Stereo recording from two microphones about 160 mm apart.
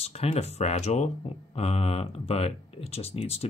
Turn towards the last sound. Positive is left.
turn(degrees=40)  # may be behind; listen again after turning